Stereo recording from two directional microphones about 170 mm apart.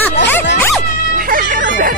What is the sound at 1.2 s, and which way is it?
Music, 60° right (ahead or behind).